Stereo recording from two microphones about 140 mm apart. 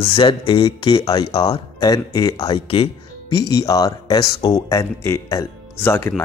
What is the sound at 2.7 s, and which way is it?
Music, 40° left (ahead or behind).